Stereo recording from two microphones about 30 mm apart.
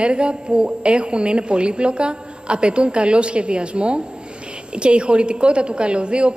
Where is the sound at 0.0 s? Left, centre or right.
Right.